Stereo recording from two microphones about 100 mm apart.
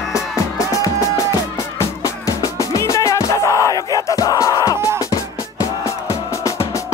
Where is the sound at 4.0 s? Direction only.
35° left (ahead or behind).